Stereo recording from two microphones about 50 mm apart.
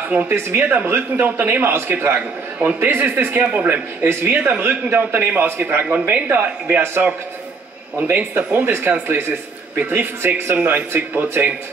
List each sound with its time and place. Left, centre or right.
0.1 s speech: right
3.4 s speech: right
4.0 s speech: right
4.4 s speech: right
6.8 s a man's voice: right
8.1 s speech: right
8.5 s speech: right